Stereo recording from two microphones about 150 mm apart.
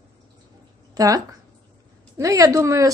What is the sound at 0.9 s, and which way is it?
Speech, 25° right (ahead or behind).